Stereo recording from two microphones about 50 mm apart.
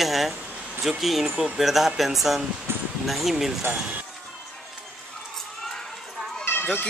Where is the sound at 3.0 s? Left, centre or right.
Centre.